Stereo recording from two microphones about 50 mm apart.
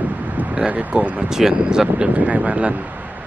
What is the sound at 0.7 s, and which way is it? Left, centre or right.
Speech, right.